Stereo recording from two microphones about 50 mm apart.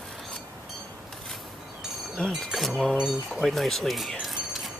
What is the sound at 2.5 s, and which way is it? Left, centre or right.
Speech, centre.